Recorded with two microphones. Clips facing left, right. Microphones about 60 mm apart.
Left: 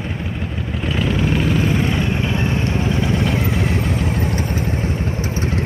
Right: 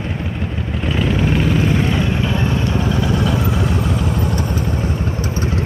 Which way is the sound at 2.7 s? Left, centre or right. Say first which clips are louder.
Right 1 dB; right.